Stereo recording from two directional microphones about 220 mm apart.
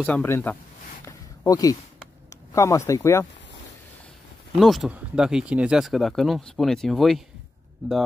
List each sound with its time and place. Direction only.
0.0 s speech: 5° left (ahead or behind)
1.0 s a sound: 15° left (ahead or behind)
2.2 s speech: 15° left (ahead or behind)
4.6 s speech: centre (ahead or behind)